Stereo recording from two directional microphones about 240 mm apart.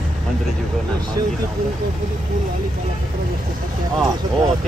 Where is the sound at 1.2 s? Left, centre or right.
Right.